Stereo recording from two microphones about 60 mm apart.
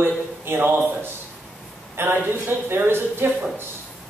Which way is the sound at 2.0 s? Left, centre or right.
Right.